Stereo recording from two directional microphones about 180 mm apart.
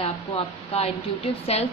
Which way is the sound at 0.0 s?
30° left (ahead or behind).